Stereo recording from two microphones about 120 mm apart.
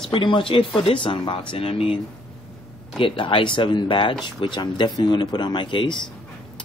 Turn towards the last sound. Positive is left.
turn(degrees=45)  # may be behind; listen again after turning